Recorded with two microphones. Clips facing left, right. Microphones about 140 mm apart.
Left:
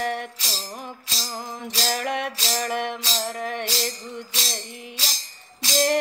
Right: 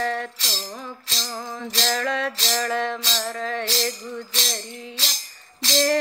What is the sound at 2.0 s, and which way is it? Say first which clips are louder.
Music: right 1 dB; 15° left (ahead or behind).